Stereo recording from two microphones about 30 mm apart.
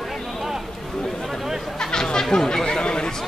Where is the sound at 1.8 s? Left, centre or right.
Left.